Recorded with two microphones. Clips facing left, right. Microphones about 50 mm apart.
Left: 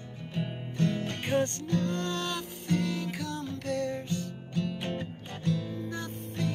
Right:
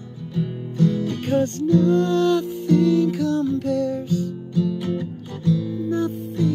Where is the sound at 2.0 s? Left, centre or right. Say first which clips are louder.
Right 14 dB; left.